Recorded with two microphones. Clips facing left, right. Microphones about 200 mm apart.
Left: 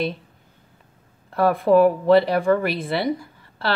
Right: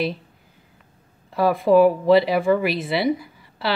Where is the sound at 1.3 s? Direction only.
Centre (ahead or behind).